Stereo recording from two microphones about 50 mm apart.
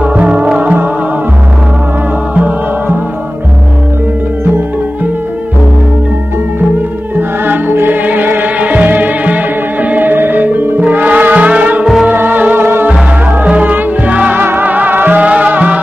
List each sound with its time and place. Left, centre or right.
0.0 s music: right
7.2 s music: right
11.8 s music: centre
12.1 s music: right